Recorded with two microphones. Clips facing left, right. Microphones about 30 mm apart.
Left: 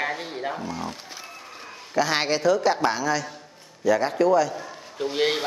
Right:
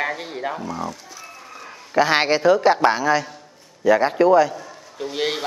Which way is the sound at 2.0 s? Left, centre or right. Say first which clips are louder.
Right 5 dB; right.